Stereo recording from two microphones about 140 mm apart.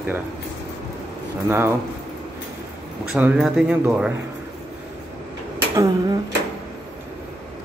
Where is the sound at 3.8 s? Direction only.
15° right (ahead or behind).